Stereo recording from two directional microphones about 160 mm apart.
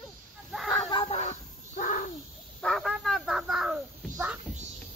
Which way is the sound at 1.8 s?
55° left (ahead or behind).